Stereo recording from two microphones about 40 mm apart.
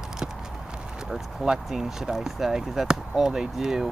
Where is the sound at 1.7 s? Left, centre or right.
Centre.